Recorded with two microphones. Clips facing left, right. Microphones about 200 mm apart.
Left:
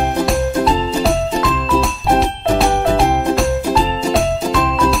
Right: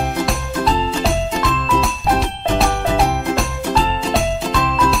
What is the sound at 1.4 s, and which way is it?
Music, centre (ahead or behind).